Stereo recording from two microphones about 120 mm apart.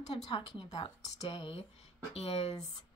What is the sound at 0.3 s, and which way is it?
Speech, 35° left (ahead or behind).